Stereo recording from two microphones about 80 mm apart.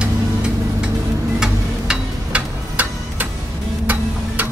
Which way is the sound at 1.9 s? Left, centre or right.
Centre.